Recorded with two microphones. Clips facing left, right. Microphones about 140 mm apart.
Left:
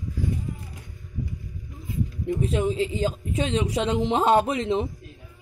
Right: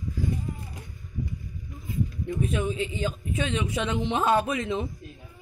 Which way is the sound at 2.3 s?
30° left (ahead or behind).